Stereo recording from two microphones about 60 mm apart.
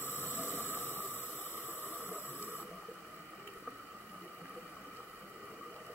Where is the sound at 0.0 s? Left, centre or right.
Left.